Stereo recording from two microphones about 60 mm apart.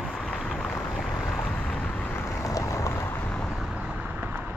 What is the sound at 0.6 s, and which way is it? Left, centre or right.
Boat, left.